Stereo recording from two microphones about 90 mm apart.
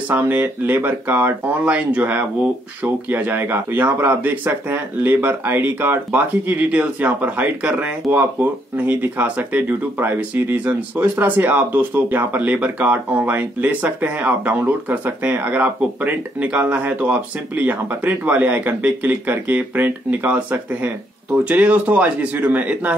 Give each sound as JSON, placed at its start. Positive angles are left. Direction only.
{"t": 0.1, "sound": "speech", "side_deg": -20}